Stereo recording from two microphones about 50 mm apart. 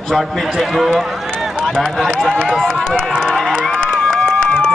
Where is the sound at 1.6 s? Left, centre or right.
Centre.